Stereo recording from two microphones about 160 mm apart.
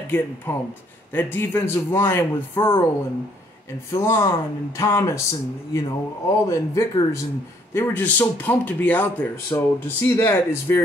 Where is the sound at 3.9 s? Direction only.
20° left (ahead or behind).